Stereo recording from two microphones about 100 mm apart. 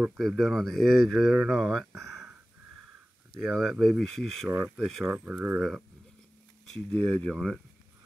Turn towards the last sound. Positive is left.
turn(degrees=0)  # may be behind; listen again after turning